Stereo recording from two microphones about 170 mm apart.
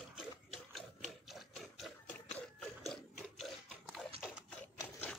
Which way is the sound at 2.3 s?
5° left (ahead or behind).